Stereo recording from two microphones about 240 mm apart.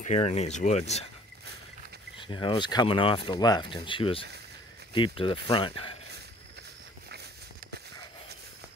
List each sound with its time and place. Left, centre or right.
0.0 s speech: left
2.1 s speech: centre